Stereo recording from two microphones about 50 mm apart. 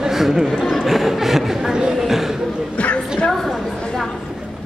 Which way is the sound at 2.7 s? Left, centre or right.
Left.